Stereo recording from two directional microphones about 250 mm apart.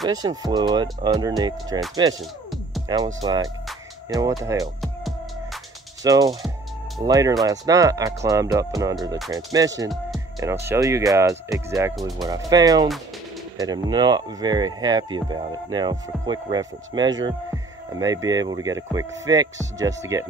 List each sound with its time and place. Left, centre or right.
0.0 s speech: centre
6.0 s speech: centre